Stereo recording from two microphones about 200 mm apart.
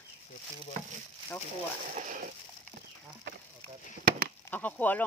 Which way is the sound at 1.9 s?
40° right (ahead or behind).